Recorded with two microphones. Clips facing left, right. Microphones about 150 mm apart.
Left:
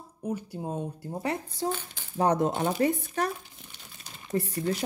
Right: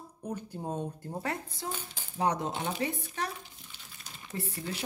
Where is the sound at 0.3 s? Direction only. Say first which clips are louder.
Left 3 dB; 10° left (ahead or behind).